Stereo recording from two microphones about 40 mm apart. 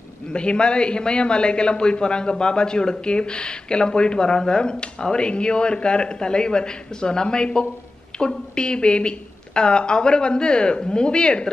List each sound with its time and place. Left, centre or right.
0.3 s a man's voice: left